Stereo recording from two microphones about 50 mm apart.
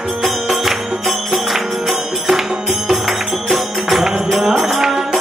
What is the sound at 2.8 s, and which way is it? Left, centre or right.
Music, centre.